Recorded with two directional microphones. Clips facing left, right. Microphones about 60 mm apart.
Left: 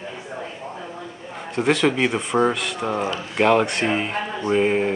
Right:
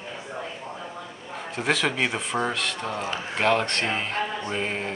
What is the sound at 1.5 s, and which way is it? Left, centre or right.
Speech, centre.